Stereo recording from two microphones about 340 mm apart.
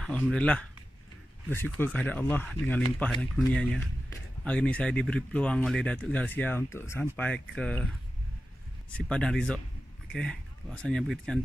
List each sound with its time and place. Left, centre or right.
0.0 s speech: centre
8.9 s speech: centre